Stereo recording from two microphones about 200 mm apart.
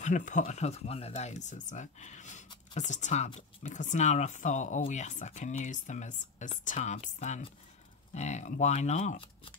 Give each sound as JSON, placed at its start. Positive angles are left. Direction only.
{"t": 0.0, "sound": "speech", "side_deg": 40}